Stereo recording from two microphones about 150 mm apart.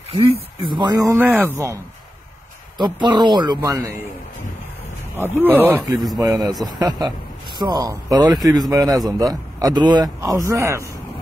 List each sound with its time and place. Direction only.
0.3 s speech: 35° right (ahead or behind); by 1.8 s 15° right (ahead or behind)
2.8 s speech: 30° right (ahead or behind)
5.1 s speech: 15° right (ahead or behind)
6.2 s speech: 25° right (ahead or behind)